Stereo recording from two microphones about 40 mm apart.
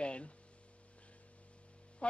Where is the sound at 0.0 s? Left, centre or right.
Left.